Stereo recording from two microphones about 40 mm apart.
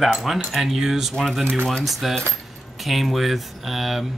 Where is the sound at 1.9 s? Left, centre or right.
Centre.